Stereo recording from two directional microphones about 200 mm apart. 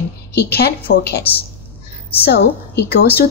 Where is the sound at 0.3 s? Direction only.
50° left (ahead or behind).